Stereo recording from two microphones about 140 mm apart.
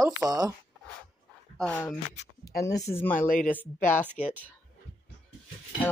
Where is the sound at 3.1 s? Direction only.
80° left.